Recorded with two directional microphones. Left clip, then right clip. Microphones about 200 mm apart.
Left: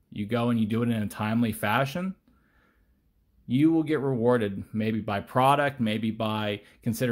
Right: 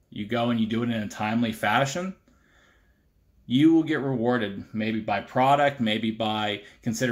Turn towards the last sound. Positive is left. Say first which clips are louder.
# right 2 dB
turn(degrees=40)  # may be behind; listen again after turning